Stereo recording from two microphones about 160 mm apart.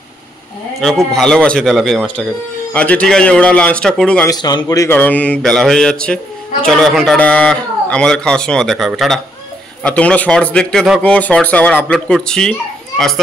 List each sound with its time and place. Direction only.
0.7 s a man's voice: centre (ahead or behind)
4.3 s a man's voice: 25° left (ahead or behind); by 13.2 s centre (ahead or behind)